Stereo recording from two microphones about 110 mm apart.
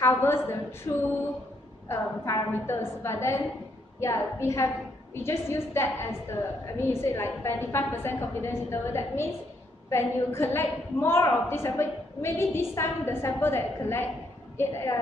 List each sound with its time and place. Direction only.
0.0 s a woman's voice: 20° left (ahead or behind)
1.9 s a woman's voice: 25° left (ahead or behind)